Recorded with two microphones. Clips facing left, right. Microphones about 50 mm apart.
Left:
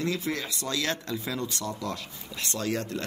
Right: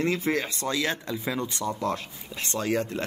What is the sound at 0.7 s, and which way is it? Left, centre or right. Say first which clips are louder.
Speech: even; centre.